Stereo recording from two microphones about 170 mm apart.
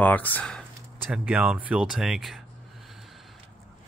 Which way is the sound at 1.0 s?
5° right (ahead or behind).